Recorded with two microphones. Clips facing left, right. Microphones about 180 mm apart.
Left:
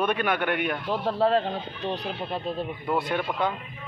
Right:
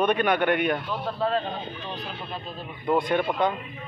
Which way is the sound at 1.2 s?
75° left (ahead or behind).